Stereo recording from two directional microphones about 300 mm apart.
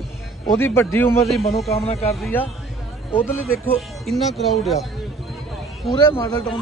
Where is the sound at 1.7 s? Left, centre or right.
Left.